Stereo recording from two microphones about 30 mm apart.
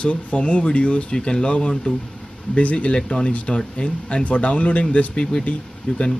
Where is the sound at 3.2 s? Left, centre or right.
Left.